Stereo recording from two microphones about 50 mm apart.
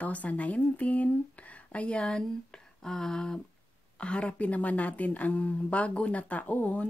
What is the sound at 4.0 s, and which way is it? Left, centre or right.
A woman's voice, left.